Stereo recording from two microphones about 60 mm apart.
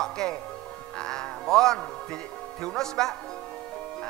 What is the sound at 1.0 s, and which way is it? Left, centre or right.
Speech, centre.